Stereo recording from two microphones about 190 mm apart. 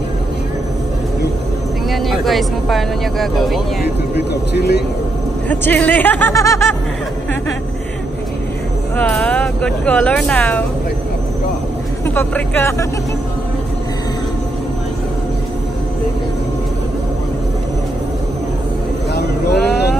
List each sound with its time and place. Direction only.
1.9 s speech: centre (ahead or behind)
3.8 s speech: 60° left (ahead or behind)
5.5 s speech: 10° left (ahead or behind)
8.9 s speech: 5° left (ahead or behind)
12.1 s speech: 10° left (ahead or behind)